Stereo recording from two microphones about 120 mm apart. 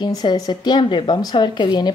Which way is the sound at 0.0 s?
35° left (ahead or behind).